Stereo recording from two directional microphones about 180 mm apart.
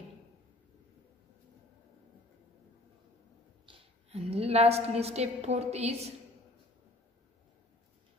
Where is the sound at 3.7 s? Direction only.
30° right (ahead or behind).